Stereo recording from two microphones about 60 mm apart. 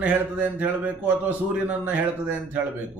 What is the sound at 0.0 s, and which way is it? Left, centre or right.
A man's voice, right.